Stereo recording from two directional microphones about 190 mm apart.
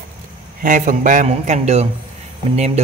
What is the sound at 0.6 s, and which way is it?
Speech, 40° right (ahead or behind).